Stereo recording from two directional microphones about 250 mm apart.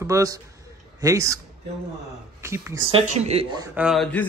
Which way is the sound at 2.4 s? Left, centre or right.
Centre.